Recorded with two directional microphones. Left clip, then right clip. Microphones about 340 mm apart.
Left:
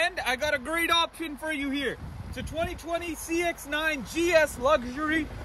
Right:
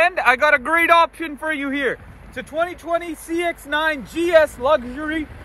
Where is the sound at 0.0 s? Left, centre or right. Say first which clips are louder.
Right 12 dB; centre.